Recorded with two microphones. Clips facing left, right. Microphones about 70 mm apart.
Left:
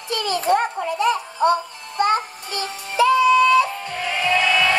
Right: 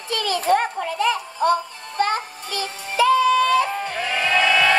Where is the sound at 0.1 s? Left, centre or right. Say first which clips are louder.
Even; left.